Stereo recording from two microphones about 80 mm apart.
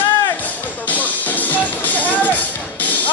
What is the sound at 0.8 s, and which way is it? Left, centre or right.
Music, left.